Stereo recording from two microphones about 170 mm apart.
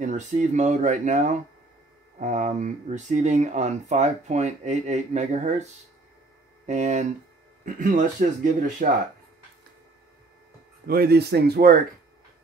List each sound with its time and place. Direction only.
0.0 s speech: 45° right (ahead or behind)
10.9 s speech: 65° right (ahead or behind)